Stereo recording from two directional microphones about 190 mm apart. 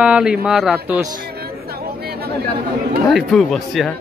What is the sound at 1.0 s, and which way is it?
Chatter, 55° right (ahead or behind).